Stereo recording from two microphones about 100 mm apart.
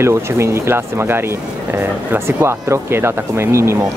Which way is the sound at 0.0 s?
25° right (ahead or behind).